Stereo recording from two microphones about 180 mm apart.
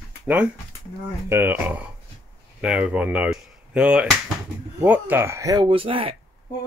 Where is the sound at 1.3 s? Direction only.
10° right (ahead or behind).